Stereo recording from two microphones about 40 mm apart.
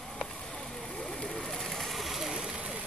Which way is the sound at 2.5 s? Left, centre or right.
Right.